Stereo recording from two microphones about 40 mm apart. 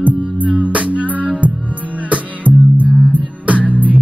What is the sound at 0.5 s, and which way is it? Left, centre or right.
Music, right.